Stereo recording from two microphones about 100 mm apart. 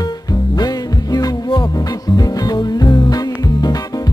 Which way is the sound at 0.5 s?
40° left (ahead or behind).